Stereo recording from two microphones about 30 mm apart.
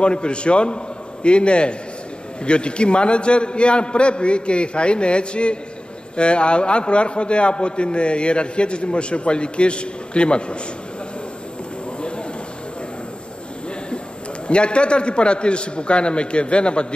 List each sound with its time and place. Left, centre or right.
0.0 s a man's voice: left
14.5 s a man's voice: left